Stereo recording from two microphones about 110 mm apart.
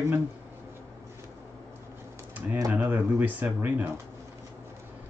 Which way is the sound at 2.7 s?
20° right (ahead or behind).